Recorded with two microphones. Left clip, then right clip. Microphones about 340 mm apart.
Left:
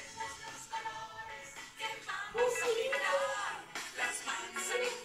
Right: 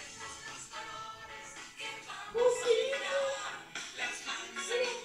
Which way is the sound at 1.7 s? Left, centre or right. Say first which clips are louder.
Left 4 dB; left.